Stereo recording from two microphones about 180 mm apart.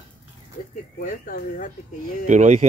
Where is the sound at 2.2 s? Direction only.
40° right (ahead or behind).